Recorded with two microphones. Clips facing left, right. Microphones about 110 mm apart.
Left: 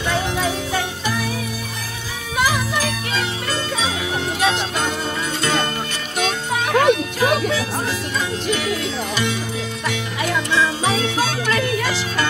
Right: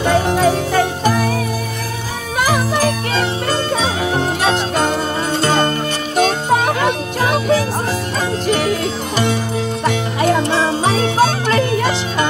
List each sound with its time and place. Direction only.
0.0 s music: 45° right (ahead or behind)
2.3 s music: 45° right (ahead or behind); by 12.3 s 25° right (ahead or behind)